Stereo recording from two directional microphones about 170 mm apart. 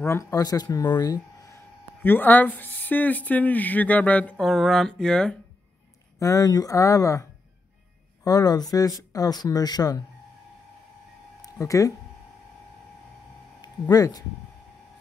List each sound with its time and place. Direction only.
0.0 s speech: 15° left (ahead or behind)
2.0 s speech: 10° left (ahead or behind)
6.1 s speech: 20° left (ahead or behind)
11.4 s speech: 20° left (ahead or behind)
13.6 s speech: 20° left (ahead or behind)